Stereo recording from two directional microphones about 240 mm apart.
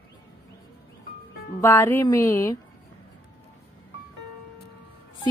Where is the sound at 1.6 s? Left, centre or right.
Centre.